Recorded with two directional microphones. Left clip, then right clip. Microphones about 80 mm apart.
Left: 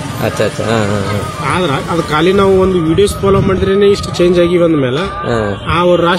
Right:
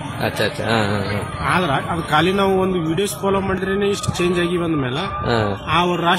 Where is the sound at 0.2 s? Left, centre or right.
Centre.